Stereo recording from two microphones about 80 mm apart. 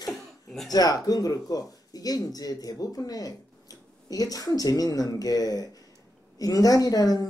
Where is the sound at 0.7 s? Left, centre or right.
Left.